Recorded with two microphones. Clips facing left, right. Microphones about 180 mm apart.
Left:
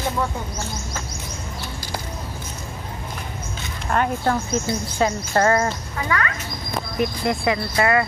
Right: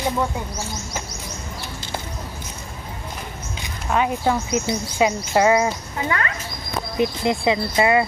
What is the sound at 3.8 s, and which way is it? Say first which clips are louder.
Speech: right 1 dB; 5° right (ahead or behind).